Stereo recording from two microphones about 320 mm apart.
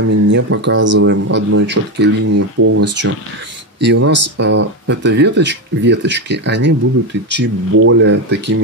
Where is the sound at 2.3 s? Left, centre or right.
Right.